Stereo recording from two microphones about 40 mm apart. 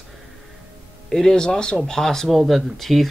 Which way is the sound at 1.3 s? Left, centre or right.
Left.